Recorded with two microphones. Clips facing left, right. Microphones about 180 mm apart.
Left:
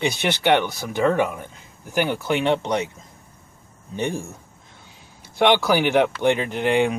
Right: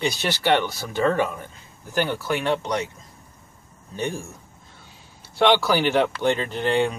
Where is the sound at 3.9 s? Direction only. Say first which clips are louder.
Left 2 dB; 20° left (ahead or behind).